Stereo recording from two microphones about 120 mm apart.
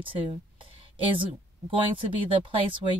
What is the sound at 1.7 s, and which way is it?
Speech, 45° right (ahead or behind).